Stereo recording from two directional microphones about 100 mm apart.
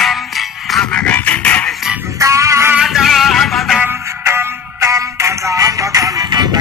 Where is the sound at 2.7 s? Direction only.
Centre (ahead or behind).